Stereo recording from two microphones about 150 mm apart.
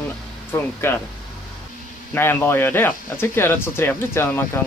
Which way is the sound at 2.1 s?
15° left (ahead or behind).